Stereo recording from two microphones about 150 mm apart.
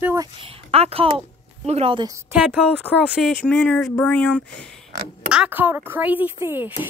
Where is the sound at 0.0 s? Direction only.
15° right (ahead or behind).